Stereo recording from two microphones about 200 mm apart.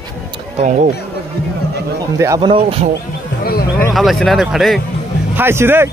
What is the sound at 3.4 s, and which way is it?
Speech, 50° left (ahead or behind).